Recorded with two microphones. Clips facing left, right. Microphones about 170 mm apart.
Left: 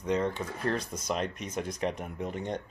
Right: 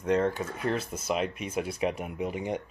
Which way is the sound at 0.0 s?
5° right (ahead or behind).